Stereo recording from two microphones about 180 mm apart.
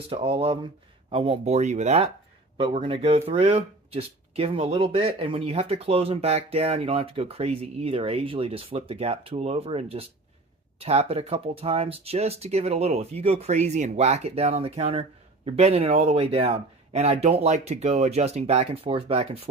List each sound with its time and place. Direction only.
0.1 s speech: 30° right (ahead or behind)
2.5 s speech: 30° right (ahead or behind)